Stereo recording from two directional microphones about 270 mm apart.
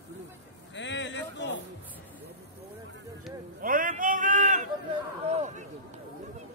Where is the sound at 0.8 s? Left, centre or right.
Left.